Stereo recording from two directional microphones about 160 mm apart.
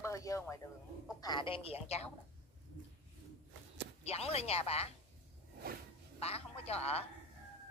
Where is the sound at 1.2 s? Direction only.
35° left (ahead or behind).